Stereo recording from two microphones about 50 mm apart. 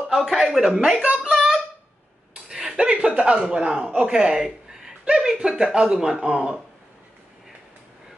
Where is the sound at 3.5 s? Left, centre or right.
Centre.